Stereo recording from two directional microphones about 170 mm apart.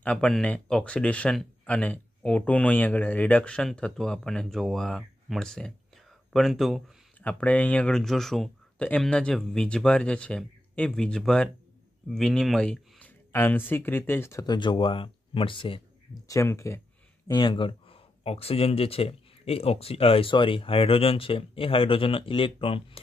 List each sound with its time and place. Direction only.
0.0 s speech: 5° left (ahead or behind); by 15.8 s 30° left (ahead or behind)
16.3 s speech: 20° left (ahead or behind)
17.3 s speech: 25° left (ahead or behind)